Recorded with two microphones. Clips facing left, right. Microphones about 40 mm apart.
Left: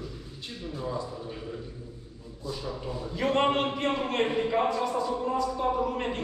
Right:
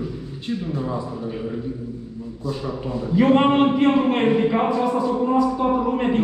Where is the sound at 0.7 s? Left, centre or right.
Right.